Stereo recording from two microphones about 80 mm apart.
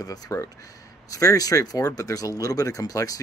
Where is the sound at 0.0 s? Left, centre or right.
Left.